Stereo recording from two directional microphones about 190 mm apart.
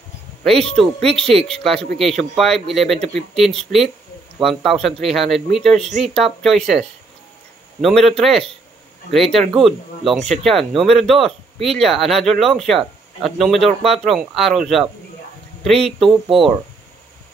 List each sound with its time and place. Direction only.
0.4 s speech: centre (ahead or behind)
7.8 s speech: centre (ahead or behind)